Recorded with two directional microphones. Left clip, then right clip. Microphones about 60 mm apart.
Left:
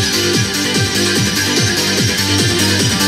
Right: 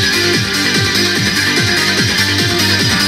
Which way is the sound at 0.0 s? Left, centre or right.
Right.